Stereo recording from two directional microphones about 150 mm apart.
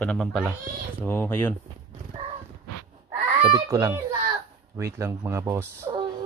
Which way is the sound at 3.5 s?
20° right (ahead or behind).